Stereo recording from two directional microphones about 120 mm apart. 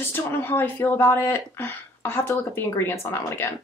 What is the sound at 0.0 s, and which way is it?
Speech, 20° left (ahead or behind).